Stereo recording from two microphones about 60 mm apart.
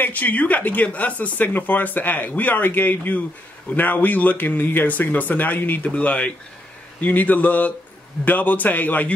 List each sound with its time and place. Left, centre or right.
0.0 s speech: left